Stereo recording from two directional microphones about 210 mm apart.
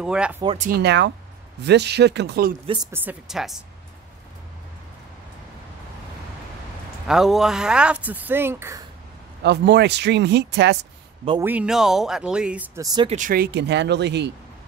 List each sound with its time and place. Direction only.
0.0 s speech: 5° right (ahead or behind)
0.6 s speech: 45° right (ahead or behind)
2.9 s speech: 10° right (ahead or behind)
7.1 s speech: centre (ahead or behind)
9.4 s speech: 55° right (ahead or behind)
11.4 s speech: 5° right (ahead or behind)
13.1 s speech: 40° right (ahead or behind)